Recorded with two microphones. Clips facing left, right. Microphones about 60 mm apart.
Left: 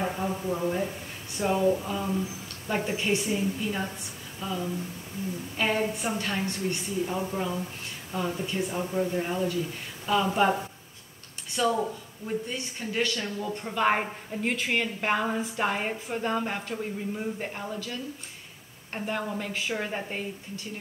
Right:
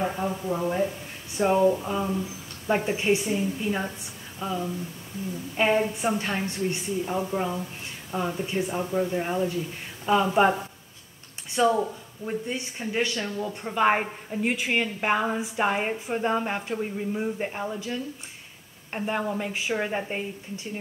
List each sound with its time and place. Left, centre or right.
0.5 s a woman's voice: centre
4.4 s speech: right
5.6 s a woman's voice: right
11.6 s a woman's voice: right